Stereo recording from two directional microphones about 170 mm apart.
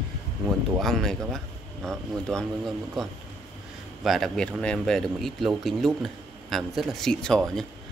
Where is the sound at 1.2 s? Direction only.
5° left (ahead or behind).